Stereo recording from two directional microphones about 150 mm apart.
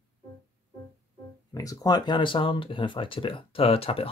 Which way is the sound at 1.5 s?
25° left (ahead or behind).